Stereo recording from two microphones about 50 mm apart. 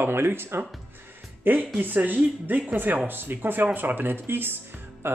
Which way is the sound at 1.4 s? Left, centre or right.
Right.